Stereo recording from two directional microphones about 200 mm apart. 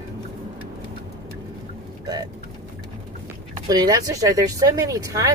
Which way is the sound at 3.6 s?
20° right (ahead or behind).